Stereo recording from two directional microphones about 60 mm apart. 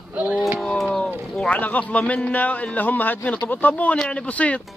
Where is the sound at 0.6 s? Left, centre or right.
Centre.